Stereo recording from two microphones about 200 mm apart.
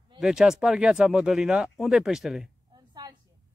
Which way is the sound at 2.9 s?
20° right (ahead or behind).